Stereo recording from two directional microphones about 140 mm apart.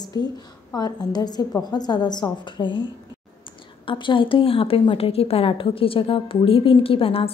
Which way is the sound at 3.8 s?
35° left (ahead or behind).